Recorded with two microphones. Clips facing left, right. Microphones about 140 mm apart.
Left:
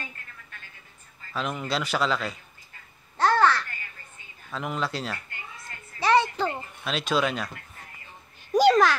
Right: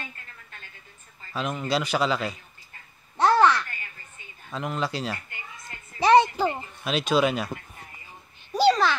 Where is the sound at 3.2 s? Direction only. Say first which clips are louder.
Right 2 dB; 15° right (ahead or behind).